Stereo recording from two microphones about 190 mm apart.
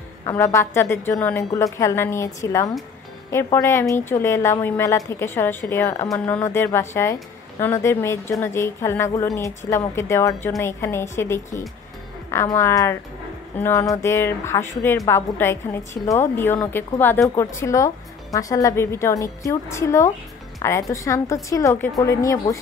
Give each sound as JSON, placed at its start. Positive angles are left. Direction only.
{"t": 0.2, "sound": "a woman's voice", "side_deg": 15}